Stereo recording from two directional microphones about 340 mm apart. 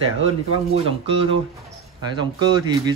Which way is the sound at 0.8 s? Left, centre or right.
Centre.